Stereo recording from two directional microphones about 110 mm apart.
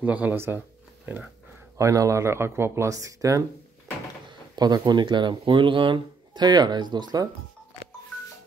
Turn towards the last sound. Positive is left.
turn(degrees=-40)  # may be behind; listen again after turning